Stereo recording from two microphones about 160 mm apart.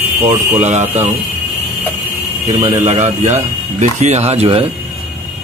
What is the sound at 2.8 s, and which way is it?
Speech, 45° right (ahead or behind).